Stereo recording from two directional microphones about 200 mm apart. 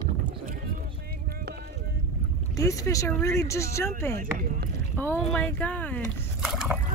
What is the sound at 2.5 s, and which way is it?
Speech, 15° left (ahead or behind).